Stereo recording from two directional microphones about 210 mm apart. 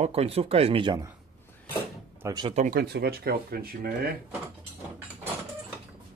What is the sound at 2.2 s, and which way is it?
Speech, 20° right (ahead or behind).